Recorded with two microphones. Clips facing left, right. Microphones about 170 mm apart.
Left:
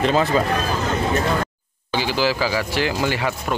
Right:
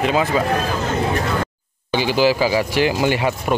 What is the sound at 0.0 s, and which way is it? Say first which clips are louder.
Speech: even; 10° right (ahead or behind).